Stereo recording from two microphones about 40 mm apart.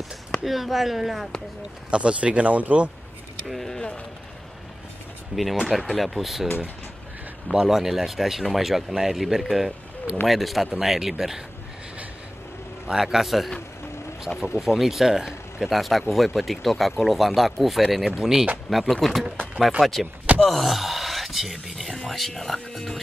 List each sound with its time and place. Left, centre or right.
0.4 s speech: centre
1.9 s speech: right
3.4 s speech: centre
5.3 s speech: centre
7.6 s speech: centre
12.9 s speech: centre
14.6 s speech: centre
15.7 s speech: centre
18.7 s speech: centre
20.4 s a sound: centre
21.9 s speech: centre